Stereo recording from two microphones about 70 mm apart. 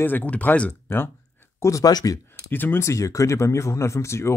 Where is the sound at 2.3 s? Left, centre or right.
Left.